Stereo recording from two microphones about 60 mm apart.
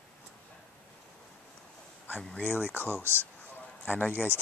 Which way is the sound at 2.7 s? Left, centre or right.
Left.